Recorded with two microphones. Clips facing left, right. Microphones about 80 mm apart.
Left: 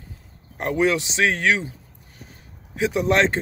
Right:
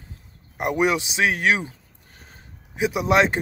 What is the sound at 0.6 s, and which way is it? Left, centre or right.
Speech, centre.